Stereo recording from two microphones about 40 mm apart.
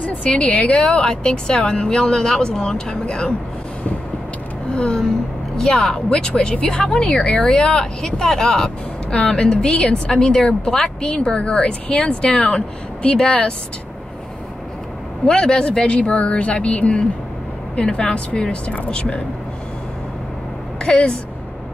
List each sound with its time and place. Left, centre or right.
0.0 s a woman's voice: left; by 3.3 s centre
4.7 s a woman's voice: centre
7.2 s speech: left
7.5 s speech: centre
9.1 s a woman's voice: left
15.2 s a woman's voice: centre
17.7 s a woman's voice: left
20.8 s a woman's voice: left